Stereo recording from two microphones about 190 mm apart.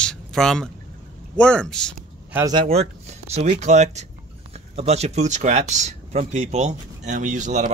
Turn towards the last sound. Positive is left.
turn(degrees=-40)  # may be behind; listen again after turning